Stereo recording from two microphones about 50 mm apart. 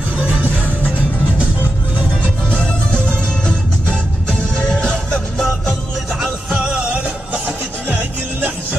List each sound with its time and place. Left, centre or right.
0.2 s music: right
2.5 s music: left
6.5 s music: right
7.4 s music: right